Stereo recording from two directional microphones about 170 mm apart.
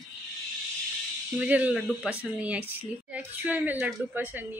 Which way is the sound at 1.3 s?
10° right (ahead or behind).